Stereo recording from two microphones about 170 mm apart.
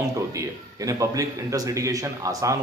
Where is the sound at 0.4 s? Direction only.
20° right (ahead or behind).